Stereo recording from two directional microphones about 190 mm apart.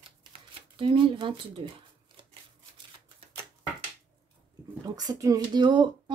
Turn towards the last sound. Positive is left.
turn(degrees=-25)  # may be behind; listen again after turning